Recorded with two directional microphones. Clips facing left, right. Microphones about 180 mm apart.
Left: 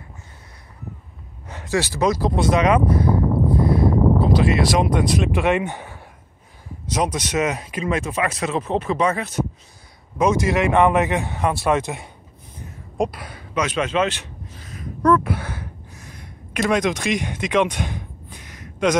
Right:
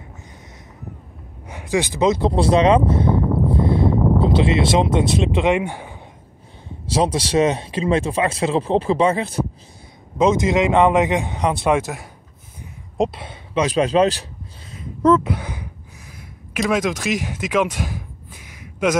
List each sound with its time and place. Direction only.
1.5 s speech: 15° right (ahead or behind)
6.9 s speech: 30° right (ahead or behind)
10.1 s speech: 20° right (ahead or behind)
11.8 s speech: centre (ahead or behind)
12.9 s speech: 25° right (ahead or behind)
14.7 s a sound: 25° right (ahead or behind)
16.5 s speech: centre (ahead or behind)